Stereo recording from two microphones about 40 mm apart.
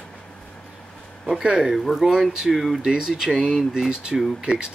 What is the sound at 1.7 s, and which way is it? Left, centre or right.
Speech, centre.